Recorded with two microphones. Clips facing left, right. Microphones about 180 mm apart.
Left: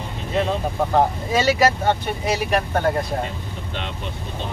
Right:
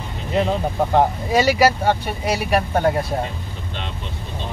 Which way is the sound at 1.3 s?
10° right (ahead or behind).